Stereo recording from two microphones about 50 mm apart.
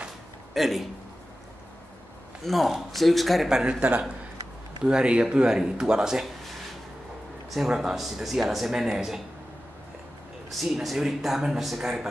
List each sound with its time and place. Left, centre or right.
0.6 s speech: centre
2.4 s speech: centre
3.4 s speech: centre
4.8 s speech: right
7.5 s speech: centre
10.5 s speech: centre